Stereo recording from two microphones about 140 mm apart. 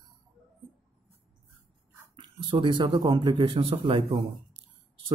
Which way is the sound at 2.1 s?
35° right (ahead or behind).